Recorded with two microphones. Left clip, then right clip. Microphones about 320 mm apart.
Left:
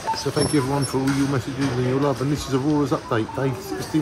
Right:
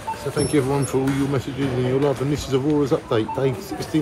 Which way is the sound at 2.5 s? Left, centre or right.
Centre.